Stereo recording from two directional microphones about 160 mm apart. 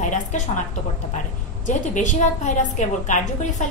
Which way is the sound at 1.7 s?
50° left (ahead or behind).